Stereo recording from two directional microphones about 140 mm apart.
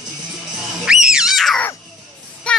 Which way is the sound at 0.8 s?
5° right (ahead or behind).